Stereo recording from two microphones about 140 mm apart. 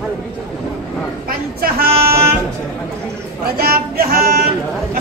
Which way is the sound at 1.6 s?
90° right.